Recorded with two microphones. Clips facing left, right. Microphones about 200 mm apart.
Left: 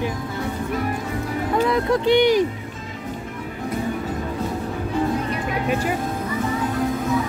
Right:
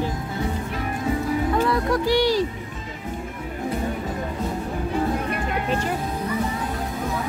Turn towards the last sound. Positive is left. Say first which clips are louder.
# left 2 dB
turn(degrees=10)  # may be behind; listen again after turning